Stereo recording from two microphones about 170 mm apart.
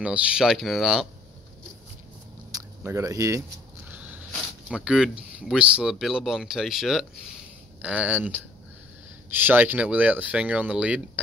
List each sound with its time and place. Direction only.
0.0 s speech: 5° right (ahead or behind)
2.5 s speech: 15° right (ahead or behind)
4.3 s speech: 5° right (ahead or behind)